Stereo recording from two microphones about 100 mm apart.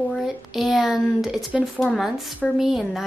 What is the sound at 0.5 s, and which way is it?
A woman's voice, centre (ahead or behind).